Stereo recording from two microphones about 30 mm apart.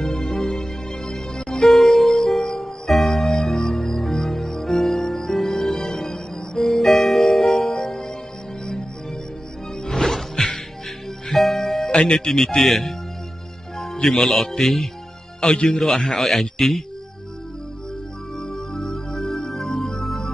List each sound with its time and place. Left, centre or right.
0.0 s music: centre
5.6 s music: centre
9.8 s music: centre
11.3 s music: centre
11.9 s music: left
12.5 s a man's voice: centre
14.2 s a man's voice: centre
15.4 s a man's voice: left
16.1 s a man's voice: centre
18.7 s music: centre
20.0 s music: centre